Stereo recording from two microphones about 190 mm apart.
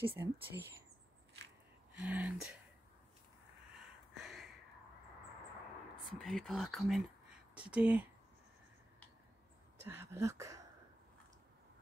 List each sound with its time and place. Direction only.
0.0 s speech: 10° right (ahead or behind)
2.0 s speech: 5° right (ahead or behind)
4.1 s a sound: centre (ahead or behind)
6.0 s speech: centre (ahead or behind)
9.8 s speech: 15° right (ahead or behind)